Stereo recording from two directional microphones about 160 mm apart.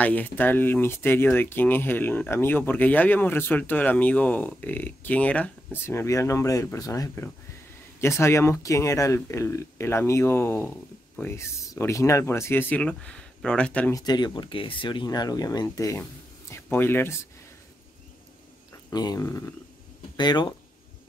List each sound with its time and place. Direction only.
0.0 s speech: 10° left (ahead or behind)
13.9 s speech: 25° left (ahead or behind)
18.9 s speech: 25° left (ahead or behind)